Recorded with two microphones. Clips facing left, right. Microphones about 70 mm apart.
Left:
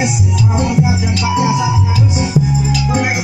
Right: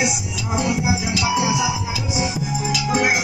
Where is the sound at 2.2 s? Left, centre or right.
Centre.